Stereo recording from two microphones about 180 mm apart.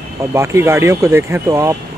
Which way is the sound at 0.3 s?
15° right (ahead or behind).